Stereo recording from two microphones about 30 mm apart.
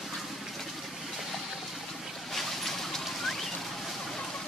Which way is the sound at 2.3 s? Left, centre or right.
Centre.